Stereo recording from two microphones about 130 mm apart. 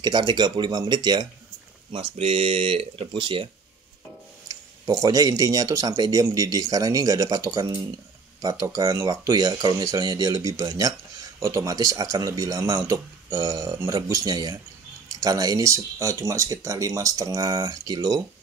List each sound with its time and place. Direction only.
0.0 s speech: 35° right (ahead or behind)
1.9 s speech: 45° right (ahead or behind)
4.5 s speech: 25° right (ahead or behind)